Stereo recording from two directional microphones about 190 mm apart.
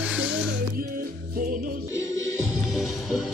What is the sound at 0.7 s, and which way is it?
Music, 50° right (ahead or behind).